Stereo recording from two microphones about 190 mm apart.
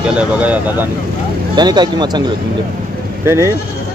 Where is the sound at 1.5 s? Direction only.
20° right (ahead or behind).